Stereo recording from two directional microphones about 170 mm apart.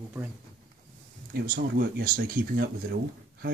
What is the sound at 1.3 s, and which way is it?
Speech, 65° right (ahead or behind).